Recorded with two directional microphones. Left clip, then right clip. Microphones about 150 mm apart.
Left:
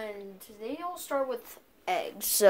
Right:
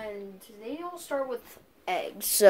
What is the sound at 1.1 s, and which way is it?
Speech, 20° left (ahead or behind).